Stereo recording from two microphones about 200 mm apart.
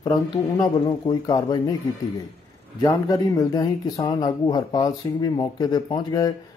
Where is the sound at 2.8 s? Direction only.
15° left (ahead or behind).